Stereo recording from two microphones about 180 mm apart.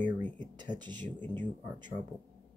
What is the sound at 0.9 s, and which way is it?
Speech, 10° left (ahead or behind).